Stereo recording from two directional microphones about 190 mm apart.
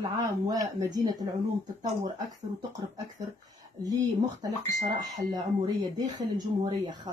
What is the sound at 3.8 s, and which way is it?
Speech, 20° right (ahead or behind).